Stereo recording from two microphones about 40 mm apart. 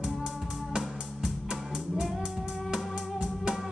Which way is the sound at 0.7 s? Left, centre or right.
Centre.